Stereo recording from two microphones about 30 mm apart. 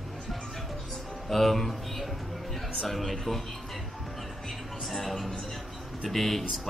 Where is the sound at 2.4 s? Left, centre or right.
Centre.